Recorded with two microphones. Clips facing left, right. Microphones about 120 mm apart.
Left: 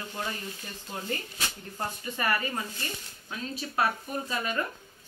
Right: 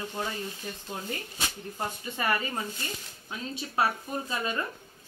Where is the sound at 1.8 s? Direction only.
20° right (ahead or behind).